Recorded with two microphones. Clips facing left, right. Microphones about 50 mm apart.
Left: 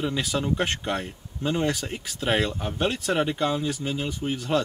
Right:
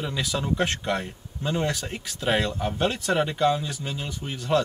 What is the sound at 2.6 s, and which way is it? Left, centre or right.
Speech, centre.